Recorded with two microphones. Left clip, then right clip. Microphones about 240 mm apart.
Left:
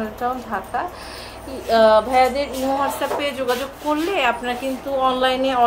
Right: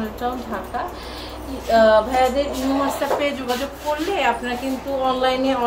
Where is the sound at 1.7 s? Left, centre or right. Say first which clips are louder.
Even; left.